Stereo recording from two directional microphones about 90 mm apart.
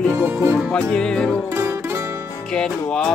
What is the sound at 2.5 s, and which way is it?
Music, 10° left (ahead or behind).